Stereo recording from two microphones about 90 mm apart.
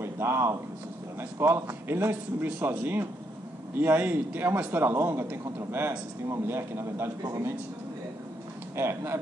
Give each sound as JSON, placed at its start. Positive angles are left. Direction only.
{"t": 0.0, "sound": "a man's voice", "side_deg": -30}
{"t": 8.7, "sound": "a man's voice", "side_deg": -30}